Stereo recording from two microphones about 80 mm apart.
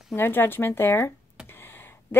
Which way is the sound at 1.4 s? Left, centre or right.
Left.